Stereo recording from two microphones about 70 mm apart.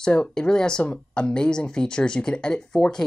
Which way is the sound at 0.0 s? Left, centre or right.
Centre.